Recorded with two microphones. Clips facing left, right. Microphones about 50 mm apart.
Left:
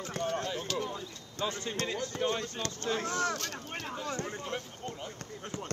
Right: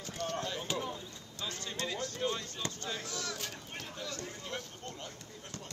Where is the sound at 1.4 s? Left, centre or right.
Left.